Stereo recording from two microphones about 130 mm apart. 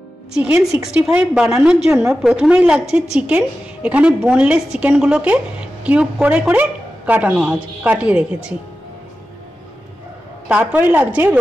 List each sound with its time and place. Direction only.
0.4 s a woman's voice: 10° right (ahead or behind)
10.5 s a woman's voice: 15° right (ahead or behind)